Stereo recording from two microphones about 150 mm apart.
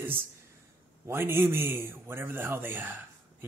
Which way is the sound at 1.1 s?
15° right (ahead or behind).